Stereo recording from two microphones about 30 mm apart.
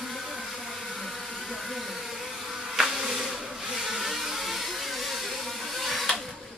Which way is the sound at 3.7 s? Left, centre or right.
Centre.